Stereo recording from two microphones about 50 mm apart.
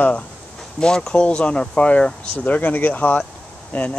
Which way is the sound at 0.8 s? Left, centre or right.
Centre.